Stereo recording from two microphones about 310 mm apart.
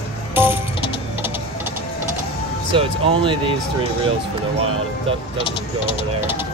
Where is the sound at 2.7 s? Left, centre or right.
Centre.